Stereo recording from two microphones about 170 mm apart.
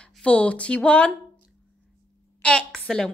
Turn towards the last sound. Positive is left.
turn(degrees=5)  # may be behind; listen again after turning